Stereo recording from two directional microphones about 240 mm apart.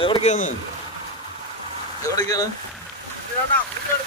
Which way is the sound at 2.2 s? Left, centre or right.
Centre.